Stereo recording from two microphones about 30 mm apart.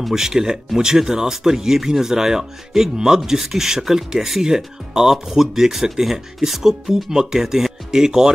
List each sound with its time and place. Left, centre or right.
0.1 s speech: centre